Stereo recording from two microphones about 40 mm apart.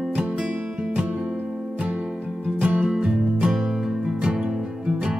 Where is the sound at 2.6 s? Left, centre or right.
Right.